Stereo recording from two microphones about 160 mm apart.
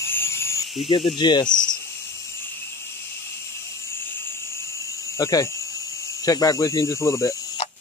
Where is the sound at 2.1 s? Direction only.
15° left (ahead or behind).